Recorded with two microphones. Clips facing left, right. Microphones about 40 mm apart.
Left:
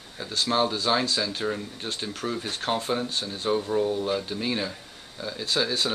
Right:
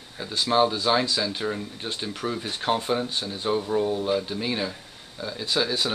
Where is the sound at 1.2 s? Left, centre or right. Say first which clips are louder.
Right 1 dB; centre.